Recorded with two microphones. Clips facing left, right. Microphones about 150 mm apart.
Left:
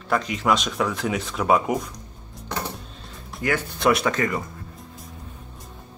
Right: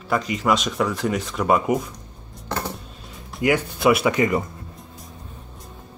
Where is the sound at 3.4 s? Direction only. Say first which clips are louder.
Right 3 dB; 10° right (ahead or behind).